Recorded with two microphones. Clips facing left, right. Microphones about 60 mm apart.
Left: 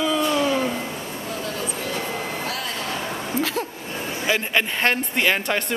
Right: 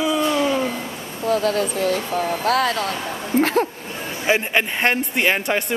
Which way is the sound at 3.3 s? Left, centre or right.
Right.